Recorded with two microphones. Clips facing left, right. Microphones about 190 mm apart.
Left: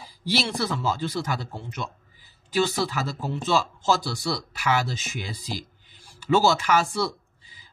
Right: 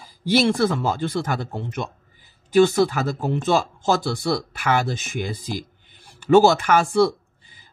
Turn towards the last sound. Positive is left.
turn(degrees=-55)  # may be behind; listen again after turning